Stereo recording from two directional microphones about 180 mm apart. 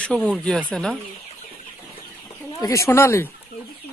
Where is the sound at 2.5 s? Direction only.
15° left (ahead or behind).